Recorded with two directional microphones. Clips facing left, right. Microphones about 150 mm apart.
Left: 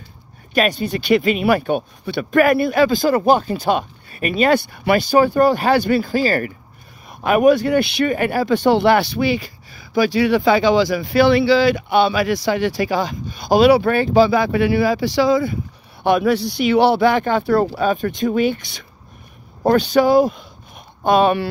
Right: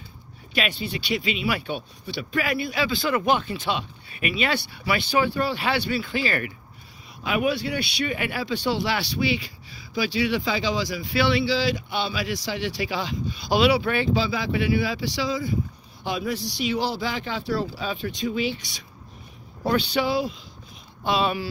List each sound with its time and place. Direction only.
0.6 s speech: 45° left (ahead or behind)